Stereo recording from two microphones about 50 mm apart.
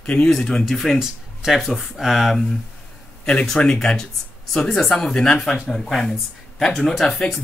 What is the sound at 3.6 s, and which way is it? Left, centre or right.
Speech, centre.